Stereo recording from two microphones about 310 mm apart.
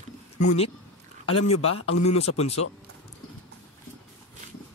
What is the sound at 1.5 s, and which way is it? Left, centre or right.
Speech, left.